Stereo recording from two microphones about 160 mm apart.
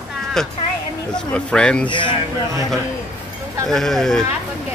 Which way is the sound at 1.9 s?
30° left (ahead or behind).